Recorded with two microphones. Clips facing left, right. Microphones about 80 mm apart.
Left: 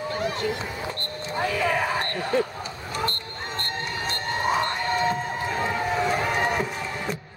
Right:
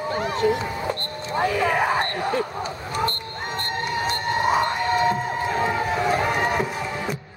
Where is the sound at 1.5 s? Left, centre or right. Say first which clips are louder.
Right 3 dB; right.